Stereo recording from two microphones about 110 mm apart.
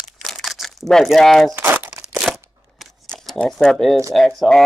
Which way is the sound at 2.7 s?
Centre (ahead or behind).